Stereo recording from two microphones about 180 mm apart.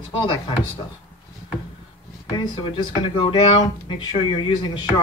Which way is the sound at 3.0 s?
25° left (ahead or behind).